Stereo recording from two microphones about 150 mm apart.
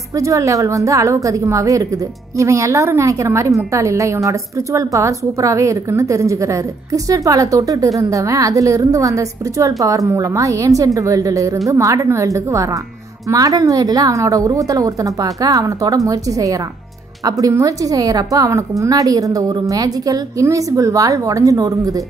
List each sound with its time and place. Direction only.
0.1 s a woman's voice: 20° right (ahead or behind)